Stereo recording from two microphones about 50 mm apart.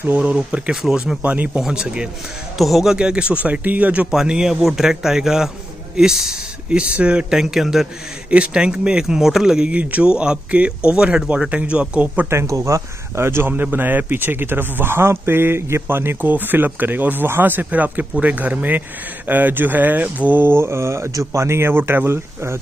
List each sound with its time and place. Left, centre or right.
0.2 s speech: right
1.2 s speech: right
1.6 s speech: centre
2.5 s speech: centre
3.0 s speech: right
4.3 s speech: centre
8.3 s speech: right
9.0 s speech: centre
9.7 s speech: right
12.3 s speech: right
13.5 s speech: right
16.2 s speech: right